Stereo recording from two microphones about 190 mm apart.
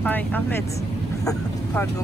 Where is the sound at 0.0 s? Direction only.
10° left (ahead or behind).